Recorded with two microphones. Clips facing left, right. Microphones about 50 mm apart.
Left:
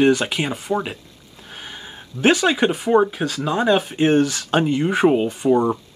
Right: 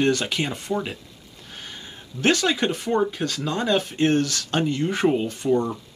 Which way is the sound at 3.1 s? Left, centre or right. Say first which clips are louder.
Left 4 dB; centre.